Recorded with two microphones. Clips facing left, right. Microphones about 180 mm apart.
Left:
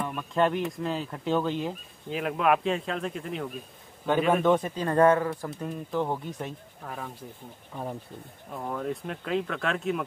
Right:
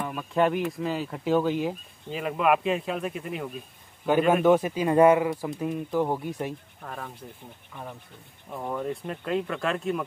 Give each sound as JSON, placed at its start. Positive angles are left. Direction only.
{"t": 0.0, "sound": "speech", "side_deg": -5}
{"t": 6.8, "sound": "speech", "side_deg": 5}
{"t": 7.7, "sound": "speech", "side_deg": 30}
{"t": 8.5, "sound": "speech", "side_deg": -5}